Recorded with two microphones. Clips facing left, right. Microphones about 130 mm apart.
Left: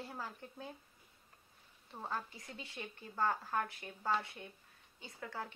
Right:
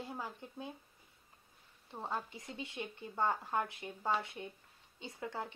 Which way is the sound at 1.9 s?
20° right (ahead or behind).